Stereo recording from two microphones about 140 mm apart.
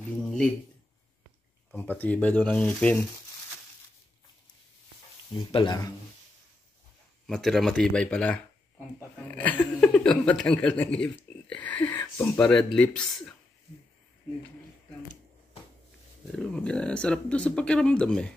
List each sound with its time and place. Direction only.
1.9 s speech: 10° left (ahead or behind)
5.3 s speech: 35° left (ahead or behind)
7.2 s speech: centre (ahead or behind)
16.3 s speech: 5° left (ahead or behind)